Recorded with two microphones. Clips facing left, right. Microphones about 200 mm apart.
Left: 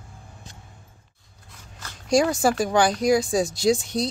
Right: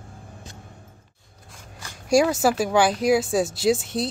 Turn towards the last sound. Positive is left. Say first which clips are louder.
# even
turn(degrees=-5)  # may be behind; listen again after turning